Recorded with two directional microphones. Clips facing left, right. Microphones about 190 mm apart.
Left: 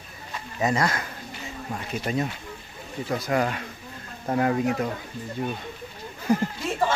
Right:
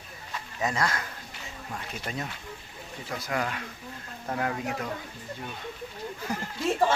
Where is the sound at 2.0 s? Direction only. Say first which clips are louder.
Left 9 dB; 15° left (ahead or behind).